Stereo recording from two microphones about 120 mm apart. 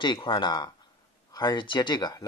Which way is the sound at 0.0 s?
40° left (ahead or behind).